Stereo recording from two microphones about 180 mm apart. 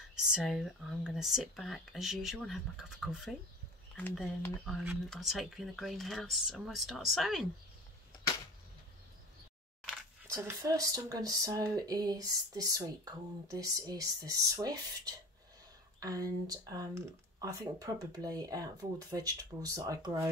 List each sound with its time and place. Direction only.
0.1 s speech: centre (ahead or behind)
10.3 s speech: 15° right (ahead or behind)